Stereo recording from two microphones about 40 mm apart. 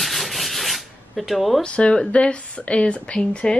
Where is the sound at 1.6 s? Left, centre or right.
Left.